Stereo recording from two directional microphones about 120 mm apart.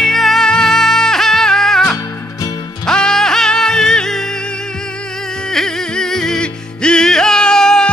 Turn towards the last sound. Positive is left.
turn(degrees=5)  # may be behind; listen again after turning